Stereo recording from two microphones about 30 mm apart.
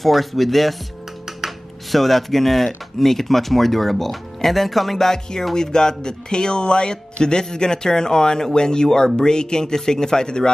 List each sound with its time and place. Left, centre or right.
0.0 s speech: centre
1.4 s computer keyboard: centre
1.9 s speech: centre; by 10.5 s left